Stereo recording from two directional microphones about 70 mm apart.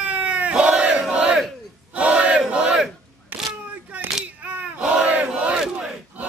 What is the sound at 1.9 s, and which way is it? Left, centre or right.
Battle cry, centre.